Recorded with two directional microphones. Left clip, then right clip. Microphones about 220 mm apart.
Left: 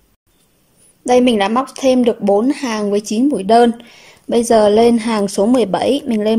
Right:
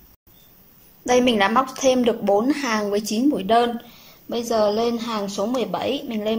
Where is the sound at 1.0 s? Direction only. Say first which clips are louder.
Left 5 dB; 15° left (ahead or behind).